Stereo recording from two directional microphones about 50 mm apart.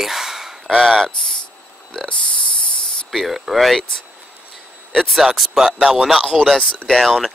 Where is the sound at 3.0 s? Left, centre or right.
Centre.